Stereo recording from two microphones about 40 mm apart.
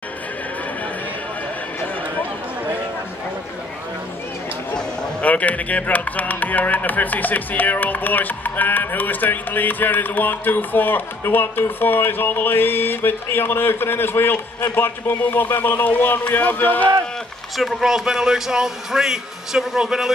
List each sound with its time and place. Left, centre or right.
5.2 s speech: left
14.8 s speech: left
16.3 s speech: left
17.6 s a man's voice: centre